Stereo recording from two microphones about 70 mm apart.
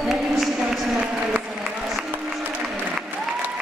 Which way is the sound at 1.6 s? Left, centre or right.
Centre.